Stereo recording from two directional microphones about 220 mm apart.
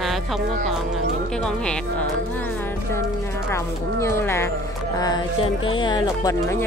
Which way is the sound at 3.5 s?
10° left (ahead or behind).